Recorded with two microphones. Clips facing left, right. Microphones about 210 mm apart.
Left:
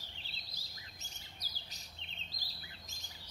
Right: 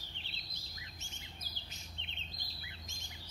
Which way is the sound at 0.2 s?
35° left (ahead or behind).